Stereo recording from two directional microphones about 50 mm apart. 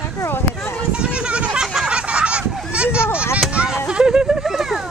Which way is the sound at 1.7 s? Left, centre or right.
Centre.